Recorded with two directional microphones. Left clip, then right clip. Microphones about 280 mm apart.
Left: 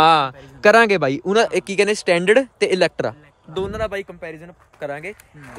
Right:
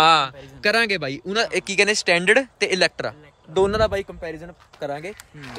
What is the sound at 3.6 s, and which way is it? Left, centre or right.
Speech, right.